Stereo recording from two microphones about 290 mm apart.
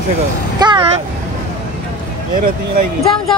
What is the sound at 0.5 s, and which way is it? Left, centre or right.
Vehicle, centre.